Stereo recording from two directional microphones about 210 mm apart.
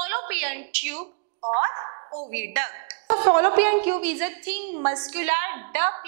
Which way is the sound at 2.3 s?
10° right (ahead or behind).